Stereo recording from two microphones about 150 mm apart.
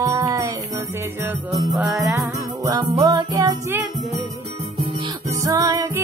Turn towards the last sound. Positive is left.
turn(degrees=-20)  # may be behind; listen again after turning